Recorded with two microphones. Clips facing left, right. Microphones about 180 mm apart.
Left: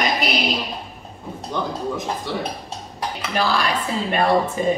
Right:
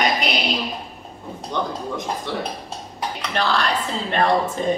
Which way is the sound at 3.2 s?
10° left (ahead or behind).